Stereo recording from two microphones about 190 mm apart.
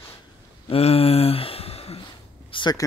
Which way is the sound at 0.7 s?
30° left (ahead or behind).